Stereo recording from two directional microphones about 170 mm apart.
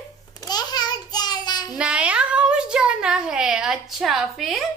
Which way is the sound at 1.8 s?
5° right (ahead or behind).